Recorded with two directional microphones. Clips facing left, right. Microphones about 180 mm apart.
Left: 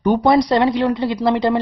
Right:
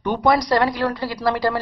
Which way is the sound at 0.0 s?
30° left (ahead or behind).